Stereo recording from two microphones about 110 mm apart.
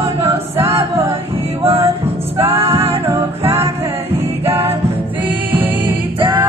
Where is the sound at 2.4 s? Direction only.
65° right (ahead or behind).